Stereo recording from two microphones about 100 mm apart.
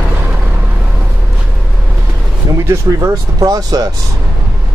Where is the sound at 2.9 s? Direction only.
35° right (ahead or behind).